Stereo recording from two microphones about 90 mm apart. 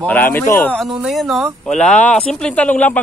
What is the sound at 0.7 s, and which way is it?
Speech, 5° right (ahead or behind).